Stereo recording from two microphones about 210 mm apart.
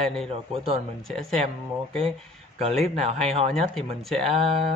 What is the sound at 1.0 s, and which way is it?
Speech, 5° left (ahead or behind).